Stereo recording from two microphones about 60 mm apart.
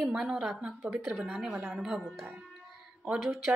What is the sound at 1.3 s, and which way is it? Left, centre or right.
Speech, centre.